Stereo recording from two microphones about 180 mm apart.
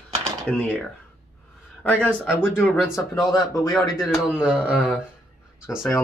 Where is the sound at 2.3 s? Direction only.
5° right (ahead or behind).